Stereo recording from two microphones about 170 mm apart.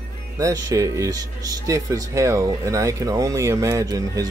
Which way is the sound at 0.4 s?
20° right (ahead or behind).